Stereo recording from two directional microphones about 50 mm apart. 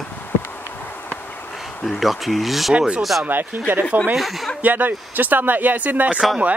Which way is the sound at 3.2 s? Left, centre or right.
Right.